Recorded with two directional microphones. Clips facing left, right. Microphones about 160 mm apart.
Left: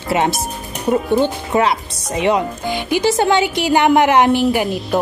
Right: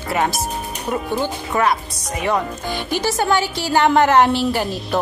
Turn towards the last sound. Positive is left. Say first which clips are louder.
# left 3 dB
turn(degrees=15)  # may be behind; listen again after turning